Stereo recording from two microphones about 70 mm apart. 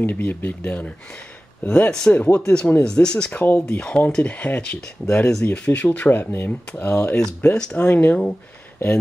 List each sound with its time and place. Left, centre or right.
0.0 s speech: left
3.5 s speech: centre; by 6.5 s left
6.7 s speech: centre